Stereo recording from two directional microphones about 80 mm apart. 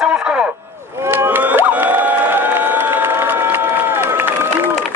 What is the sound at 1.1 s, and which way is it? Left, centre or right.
Crowd, right.